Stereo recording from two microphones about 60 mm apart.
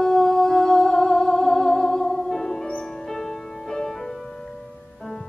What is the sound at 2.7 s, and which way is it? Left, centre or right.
Music, centre.